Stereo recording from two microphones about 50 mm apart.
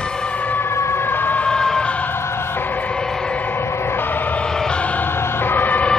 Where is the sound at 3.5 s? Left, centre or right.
Left.